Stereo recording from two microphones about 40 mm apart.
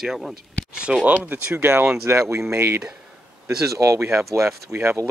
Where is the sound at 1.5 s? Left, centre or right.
Right.